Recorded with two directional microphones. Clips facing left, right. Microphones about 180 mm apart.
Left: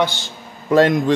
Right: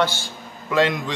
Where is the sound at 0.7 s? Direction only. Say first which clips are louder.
Left 6 dB; 45° left (ahead or behind).